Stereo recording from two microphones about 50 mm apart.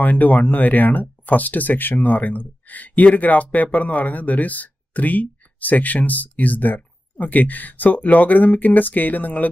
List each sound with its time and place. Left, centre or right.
0.0 s speech: left